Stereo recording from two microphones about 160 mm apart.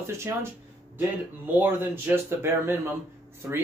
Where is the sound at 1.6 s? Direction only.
15° right (ahead or behind).